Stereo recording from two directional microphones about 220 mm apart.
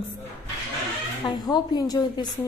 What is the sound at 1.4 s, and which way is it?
Speech, 20° left (ahead or behind).